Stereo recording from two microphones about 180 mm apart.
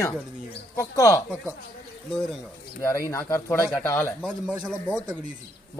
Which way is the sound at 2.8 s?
15° left (ahead or behind).